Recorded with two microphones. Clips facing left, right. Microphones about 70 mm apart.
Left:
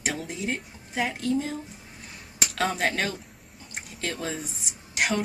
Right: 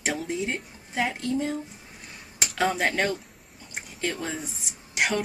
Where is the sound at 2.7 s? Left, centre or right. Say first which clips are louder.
Right 2 dB; centre.